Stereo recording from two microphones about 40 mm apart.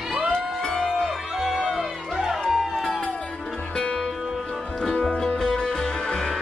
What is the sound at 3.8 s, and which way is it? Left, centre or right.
Music, left.